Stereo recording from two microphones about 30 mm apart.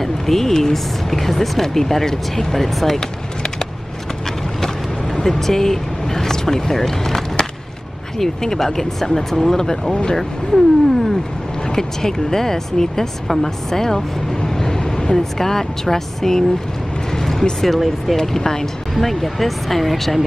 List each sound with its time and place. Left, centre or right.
0.0 s speech: centre
5.2 s speech: centre
14.5 s vehicle: centre
15.1 s speech: centre
17.1 s vehicle: centre
17.6 s speech: centre
18.1 s speech: centre
18.9 s speech: centre